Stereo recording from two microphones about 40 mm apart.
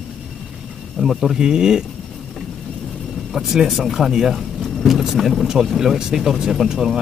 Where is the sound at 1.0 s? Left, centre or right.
Centre.